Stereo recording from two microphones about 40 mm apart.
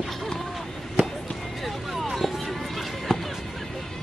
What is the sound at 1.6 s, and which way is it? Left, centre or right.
Chop, centre.